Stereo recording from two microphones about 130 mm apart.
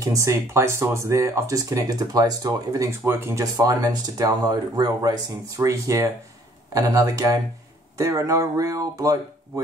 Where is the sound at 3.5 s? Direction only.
30° right (ahead or behind).